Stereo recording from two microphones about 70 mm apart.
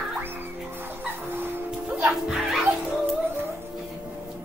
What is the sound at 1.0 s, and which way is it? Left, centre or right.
Music, right.